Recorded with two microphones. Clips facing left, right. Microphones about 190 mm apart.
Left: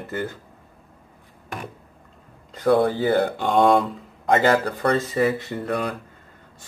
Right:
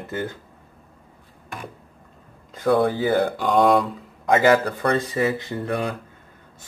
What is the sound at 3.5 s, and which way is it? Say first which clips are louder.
Speech: even; centre (ahead or behind).